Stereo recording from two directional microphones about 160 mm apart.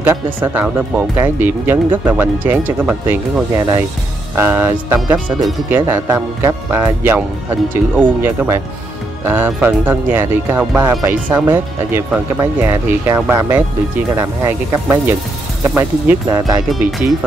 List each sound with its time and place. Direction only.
0.0 s speech: 15° right (ahead or behind)
3.5 s speech: 20° right (ahead or behind)
10.8 s speech: 20° right (ahead or behind)